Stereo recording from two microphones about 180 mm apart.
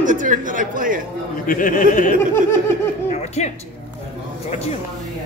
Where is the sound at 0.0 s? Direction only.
45° right (ahead or behind).